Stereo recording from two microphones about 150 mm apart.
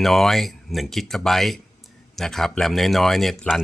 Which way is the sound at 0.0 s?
Centre (ahead or behind).